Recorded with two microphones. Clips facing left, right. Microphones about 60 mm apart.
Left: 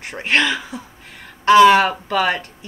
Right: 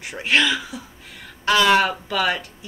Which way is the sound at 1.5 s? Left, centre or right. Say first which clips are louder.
Left 6 dB; left.